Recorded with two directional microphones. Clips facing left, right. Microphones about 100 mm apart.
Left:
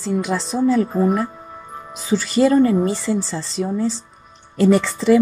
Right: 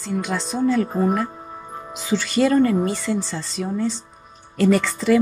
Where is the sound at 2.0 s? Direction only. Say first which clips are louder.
Left 3 dB; 35° left (ahead or behind).